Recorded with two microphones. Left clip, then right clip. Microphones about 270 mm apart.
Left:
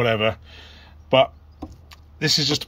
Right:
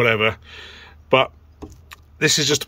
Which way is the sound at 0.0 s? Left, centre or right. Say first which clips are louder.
Right 3 dB; centre.